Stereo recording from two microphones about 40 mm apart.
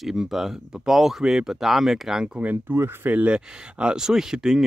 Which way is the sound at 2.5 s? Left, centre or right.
Right.